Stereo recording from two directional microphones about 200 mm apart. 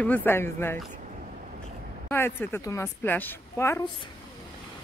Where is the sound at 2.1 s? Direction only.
10° left (ahead or behind).